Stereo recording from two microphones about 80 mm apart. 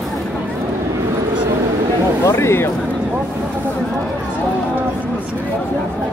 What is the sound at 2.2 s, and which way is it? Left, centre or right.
Speech, left.